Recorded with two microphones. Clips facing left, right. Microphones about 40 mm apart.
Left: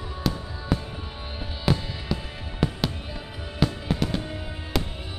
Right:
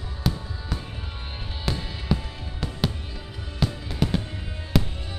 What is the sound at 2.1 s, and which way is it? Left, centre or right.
Music, centre.